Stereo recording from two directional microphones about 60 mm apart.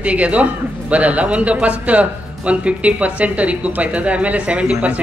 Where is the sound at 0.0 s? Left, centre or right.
Right.